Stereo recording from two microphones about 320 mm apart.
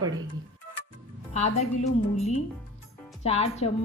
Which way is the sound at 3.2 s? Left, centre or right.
Centre.